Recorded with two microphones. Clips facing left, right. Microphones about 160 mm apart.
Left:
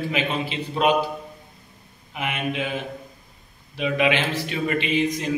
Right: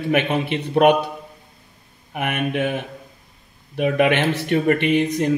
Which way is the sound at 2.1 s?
60° right (ahead or behind).